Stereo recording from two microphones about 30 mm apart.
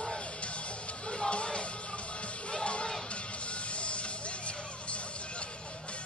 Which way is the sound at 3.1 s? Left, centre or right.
Left.